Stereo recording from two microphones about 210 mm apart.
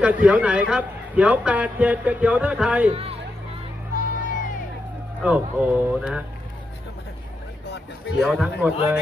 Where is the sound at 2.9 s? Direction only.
30° right (ahead or behind).